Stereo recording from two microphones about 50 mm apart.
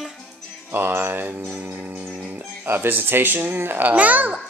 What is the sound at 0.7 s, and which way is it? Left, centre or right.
Speech, right.